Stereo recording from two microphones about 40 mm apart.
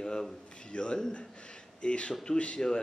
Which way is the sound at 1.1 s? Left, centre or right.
Left.